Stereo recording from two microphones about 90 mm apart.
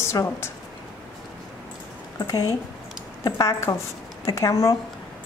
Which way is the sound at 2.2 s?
40° left (ahead or behind).